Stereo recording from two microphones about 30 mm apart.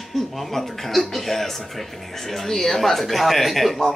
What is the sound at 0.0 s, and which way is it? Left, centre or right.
Speech, centre.